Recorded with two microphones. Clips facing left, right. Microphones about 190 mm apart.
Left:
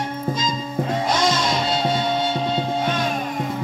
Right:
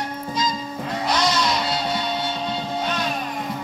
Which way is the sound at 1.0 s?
50° left (ahead or behind).